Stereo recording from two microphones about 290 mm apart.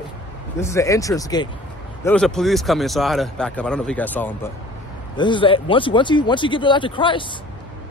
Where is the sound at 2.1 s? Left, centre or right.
Centre.